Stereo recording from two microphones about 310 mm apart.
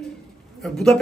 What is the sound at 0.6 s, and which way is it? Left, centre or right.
Speech, centre.